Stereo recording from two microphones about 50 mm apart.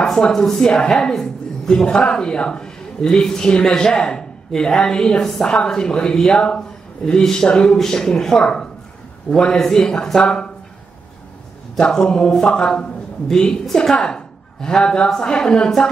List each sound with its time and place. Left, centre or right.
0.5 s a woman's voice: centre
11.8 s a woman's voice: centre